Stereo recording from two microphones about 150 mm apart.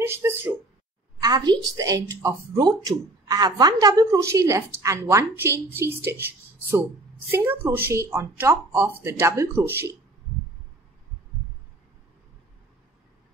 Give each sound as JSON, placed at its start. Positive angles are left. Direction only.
{"t": 0.0, "sound": "speech", "side_deg": -15}
{"t": 1.2, "sound": "a woman's voice", "side_deg": -30}
{"t": 7.2, "sound": "speech", "side_deg": -15}